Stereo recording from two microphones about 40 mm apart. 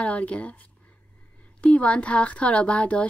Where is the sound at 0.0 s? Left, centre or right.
Left.